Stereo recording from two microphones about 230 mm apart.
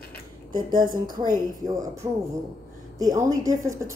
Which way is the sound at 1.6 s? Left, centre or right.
Centre.